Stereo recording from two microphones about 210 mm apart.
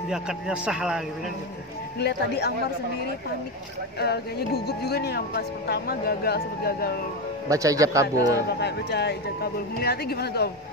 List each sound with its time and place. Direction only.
0.1 s a man's voice: 5° right (ahead or behind)
2.0 s speech: 50° left (ahead or behind)
4.0 s speech: 50° left (ahead or behind)
7.4 s a man's voice: 15° right (ahead or behind)
8.5 s speech: 55° left (ahead or behind)